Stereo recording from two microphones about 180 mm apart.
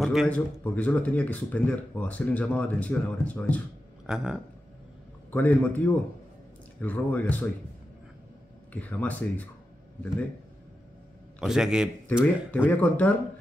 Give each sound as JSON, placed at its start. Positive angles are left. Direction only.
{"t": 0.0, "sound": "speech", "side_deg": 0}
{"t": 4.0, "sound": "speech", "side_deg": -5}
{"t": 5.3, "sound": "speech", "side_deg": 10}
{"t": 8.7, "sound": "speech", "side_deg": 10}
{"t": 11.3, "sound": "a man's voice", "side_deg": 0}
{"t": 12.4, "sound": "speech", "side_deg": 10}